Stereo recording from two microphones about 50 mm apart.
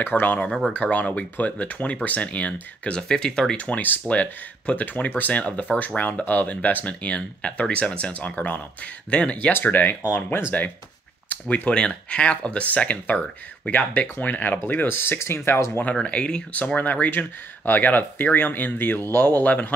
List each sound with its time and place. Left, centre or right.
0.0 s speech: left
0.7 s speech: left
3.0 s speech: centre
3.5 s speech: left
9.5 s speech: left
11.4 s speech: left
14.9 s speech: left
15.1 s speech: left
15.8 s speech: left
19.4 s speech: left